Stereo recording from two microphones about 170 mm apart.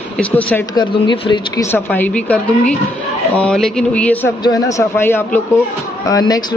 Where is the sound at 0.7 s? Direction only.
30° left (ahead or behind).